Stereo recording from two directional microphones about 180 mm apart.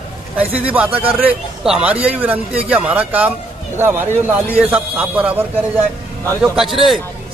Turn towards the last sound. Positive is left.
turn(degrees=0)  # may be behind; listen again after turning